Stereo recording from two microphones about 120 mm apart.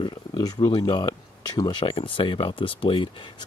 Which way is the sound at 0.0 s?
40° left (ahead or behind).